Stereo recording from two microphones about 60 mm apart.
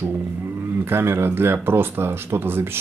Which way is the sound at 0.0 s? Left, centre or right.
Right.